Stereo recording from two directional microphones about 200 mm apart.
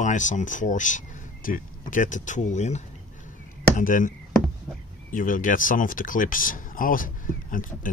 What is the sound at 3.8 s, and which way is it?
Speech, 40° left (ahead or behind).